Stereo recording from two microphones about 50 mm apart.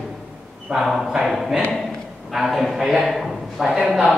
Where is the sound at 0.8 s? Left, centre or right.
Centre.